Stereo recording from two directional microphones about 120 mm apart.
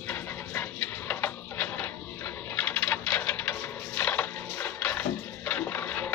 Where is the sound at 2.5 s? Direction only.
15° left (ahead or behind).